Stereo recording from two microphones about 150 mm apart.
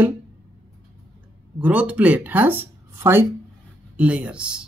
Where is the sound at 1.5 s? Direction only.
10° right (ahead or behind).